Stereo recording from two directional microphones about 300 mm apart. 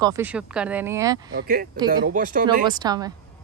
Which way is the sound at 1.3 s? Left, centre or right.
Right.